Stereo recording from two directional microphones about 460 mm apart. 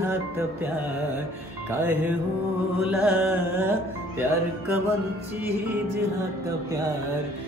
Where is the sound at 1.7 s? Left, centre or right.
Centre.